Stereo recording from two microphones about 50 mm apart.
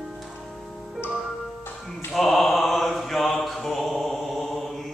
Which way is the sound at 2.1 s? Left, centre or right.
Centre.